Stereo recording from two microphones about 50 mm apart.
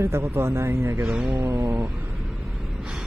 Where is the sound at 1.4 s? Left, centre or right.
Right.